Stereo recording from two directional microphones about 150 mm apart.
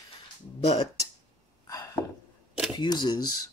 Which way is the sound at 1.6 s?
25° left (ahead or behind).